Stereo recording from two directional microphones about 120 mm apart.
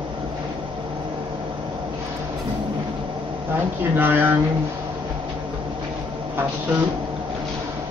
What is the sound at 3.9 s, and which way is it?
Speech, 15° right (ahead or behind).